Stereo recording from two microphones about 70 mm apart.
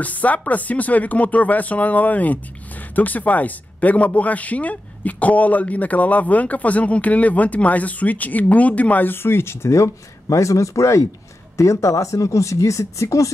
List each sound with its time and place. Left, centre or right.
0.0 s speech: left